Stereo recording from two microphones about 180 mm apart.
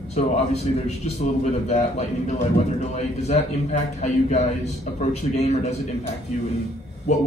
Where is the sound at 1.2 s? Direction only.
40° left (ahead or behind).